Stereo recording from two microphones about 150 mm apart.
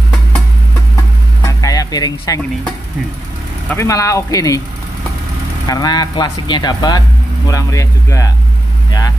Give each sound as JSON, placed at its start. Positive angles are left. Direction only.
{"t": 1.4, "sound": "music", "side_deg": 25}
{"t": 3.6, "sound": "speech", "side_deg": 20}
{"t": 5.7, "sound": "speech", "side_deg": 25}